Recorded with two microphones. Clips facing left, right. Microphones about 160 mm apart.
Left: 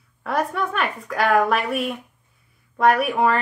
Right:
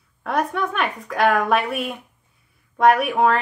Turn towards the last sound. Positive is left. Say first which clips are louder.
# right 1 dB
turn(degrees=0)  # may be behind; listen again after turning